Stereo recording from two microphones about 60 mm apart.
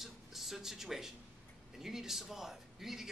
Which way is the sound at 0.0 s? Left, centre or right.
Centre.